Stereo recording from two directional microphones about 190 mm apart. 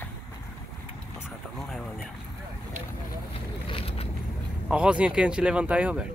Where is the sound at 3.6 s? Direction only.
30° left (ahead or behind).